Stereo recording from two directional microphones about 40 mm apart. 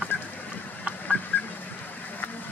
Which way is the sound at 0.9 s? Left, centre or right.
Right.